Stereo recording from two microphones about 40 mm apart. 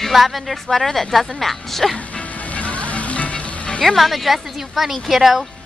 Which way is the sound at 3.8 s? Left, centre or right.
Centre.